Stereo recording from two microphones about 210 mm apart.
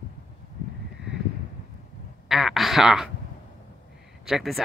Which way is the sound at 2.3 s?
Centre (ahead or behind).